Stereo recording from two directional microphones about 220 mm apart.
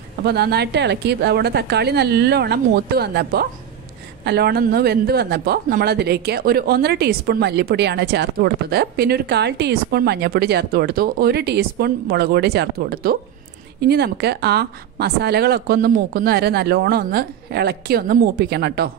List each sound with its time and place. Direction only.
0.2 s a man's voice: 45° right (ahead or behind)